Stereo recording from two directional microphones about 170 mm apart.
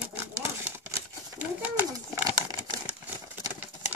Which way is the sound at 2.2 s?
25° right (ahead or behind).